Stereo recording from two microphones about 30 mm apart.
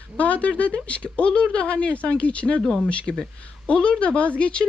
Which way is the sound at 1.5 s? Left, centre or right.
Left.